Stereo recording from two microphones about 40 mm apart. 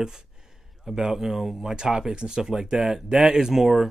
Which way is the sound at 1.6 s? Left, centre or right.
Centre.